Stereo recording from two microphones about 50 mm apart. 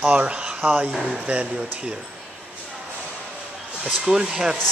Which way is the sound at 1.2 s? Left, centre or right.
Right.